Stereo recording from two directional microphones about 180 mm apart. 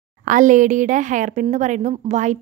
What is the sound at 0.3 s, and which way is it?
A woman's voice, 45° right (ahead or behind).